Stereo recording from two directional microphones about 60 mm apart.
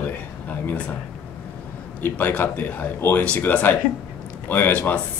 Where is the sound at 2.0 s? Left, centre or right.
Left.